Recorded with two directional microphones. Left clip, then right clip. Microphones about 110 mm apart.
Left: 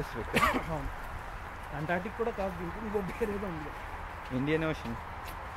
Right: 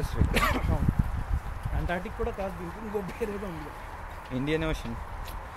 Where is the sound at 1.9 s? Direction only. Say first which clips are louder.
Even; 10° right (ahead or behind).